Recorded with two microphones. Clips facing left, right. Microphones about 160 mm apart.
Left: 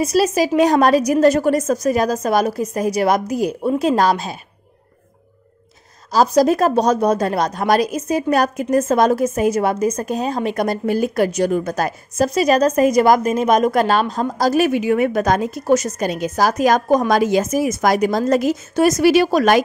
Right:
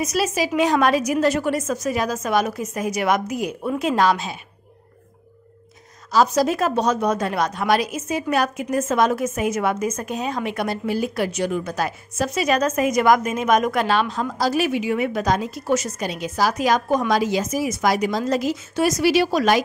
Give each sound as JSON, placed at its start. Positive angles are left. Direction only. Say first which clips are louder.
{"t": 0.0, "sound": "a woman's voice", "louder": "left 6 dB", "side_deg": 35}
{"t": 6.1, "sound": "a woman's voice", "louder": "left 4 dB", "side_deg": 35}